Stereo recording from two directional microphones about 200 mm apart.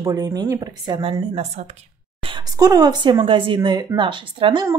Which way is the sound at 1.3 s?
35° right (ahead or behind).